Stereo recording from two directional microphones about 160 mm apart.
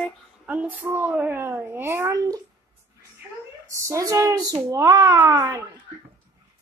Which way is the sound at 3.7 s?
20° right (ahead or behind).